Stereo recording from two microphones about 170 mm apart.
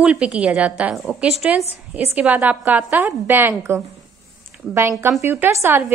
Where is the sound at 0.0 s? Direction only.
5° right (ahead or behind).